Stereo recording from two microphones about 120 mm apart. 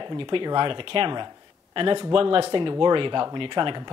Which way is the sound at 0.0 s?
45° right (ahead or behind).